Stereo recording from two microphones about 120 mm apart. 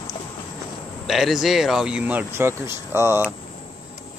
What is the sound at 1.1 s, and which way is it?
Speech, centre (ahead or behind).